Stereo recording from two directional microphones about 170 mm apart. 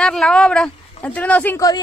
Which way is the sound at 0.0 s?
5° left (ahead or behind).